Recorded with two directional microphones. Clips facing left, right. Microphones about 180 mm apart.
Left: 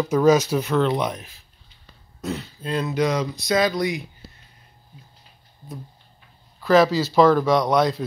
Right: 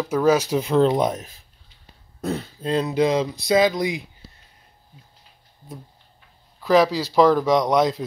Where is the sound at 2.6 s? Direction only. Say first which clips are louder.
Right 3 dB; 30° right (ahead or behind).